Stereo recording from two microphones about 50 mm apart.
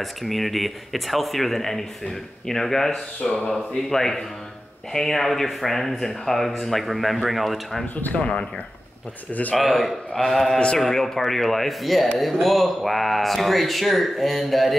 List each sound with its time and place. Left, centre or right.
0.0 s speech: centre
7.9 s speech: left
9.3 s speech: left
9.6 s speech: centre